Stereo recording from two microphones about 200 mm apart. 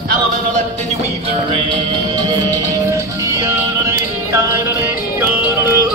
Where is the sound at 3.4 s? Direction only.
15° right (ahead or behind).